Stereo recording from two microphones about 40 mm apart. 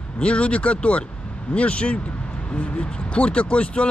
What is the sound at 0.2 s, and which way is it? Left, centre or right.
Speech, left.